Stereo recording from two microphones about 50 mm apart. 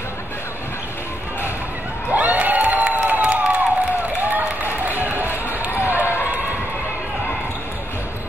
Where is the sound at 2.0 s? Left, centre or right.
Right.